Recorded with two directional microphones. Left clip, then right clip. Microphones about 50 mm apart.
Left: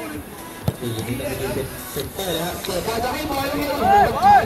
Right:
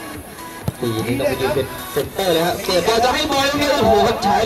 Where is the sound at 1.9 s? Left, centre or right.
Right.